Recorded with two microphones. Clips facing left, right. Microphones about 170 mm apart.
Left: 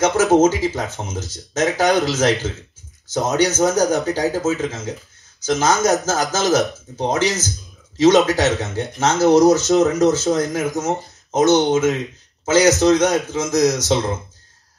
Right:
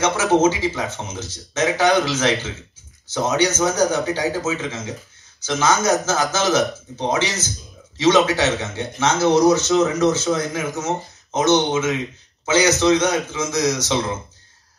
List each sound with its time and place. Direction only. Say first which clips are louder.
0.0 s speech: left 3 dB; 40° left (ahead or behind)